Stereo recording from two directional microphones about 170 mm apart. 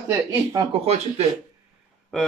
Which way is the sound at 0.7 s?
40° right (ahead or behind).